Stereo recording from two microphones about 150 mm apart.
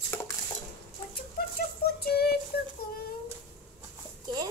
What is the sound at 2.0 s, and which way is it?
Child singing, 90° left.